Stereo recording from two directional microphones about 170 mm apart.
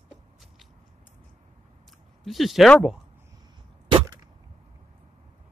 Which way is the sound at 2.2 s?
Centre (ahead or behind).